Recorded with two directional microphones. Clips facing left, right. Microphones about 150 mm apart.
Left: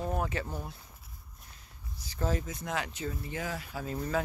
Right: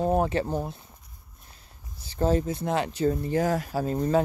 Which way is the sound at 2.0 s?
30° right (ahead or behind).